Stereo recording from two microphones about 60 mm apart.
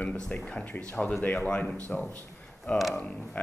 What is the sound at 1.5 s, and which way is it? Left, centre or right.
Speech, centre.